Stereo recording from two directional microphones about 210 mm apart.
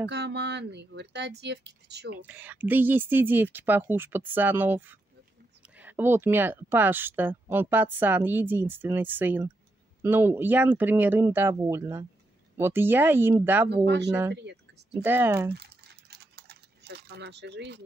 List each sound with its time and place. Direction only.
0.1 s speech: 55° right (ahead or behind)
2.2 s speech: 5° right (ahead or behind)
13.8 s speech: 55° right (ahead or behind)
15.0 s speech: 10° right (ahead or behind)
15.5 s typing: 50° right (ahead or behind)